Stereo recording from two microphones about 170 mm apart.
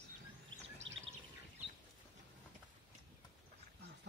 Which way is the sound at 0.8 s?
90° right.